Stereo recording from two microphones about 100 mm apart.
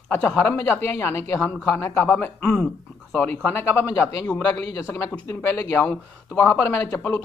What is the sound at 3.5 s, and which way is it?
Speech, 25° left (ahead or behind).